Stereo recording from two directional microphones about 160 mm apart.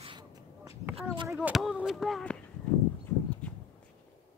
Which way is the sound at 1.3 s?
5° right (ahead or behind).